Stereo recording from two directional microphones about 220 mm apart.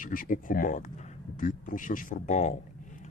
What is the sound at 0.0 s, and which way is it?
A man's voice, 40° left (ahead or behind).